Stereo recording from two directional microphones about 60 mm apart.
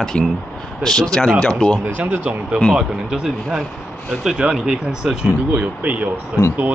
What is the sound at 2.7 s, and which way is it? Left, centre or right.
Speech, centre.